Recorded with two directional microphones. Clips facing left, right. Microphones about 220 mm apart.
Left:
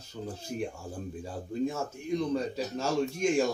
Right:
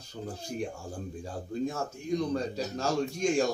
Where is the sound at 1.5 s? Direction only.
5° left (ahead or behind).